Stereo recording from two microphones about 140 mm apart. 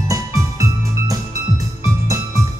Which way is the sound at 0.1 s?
20° right (ahead or behind).